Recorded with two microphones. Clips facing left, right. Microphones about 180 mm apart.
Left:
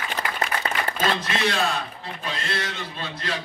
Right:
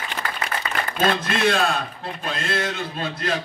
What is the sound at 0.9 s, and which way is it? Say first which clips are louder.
A man's voice: right 6 dB; 55° right (ahead or behind).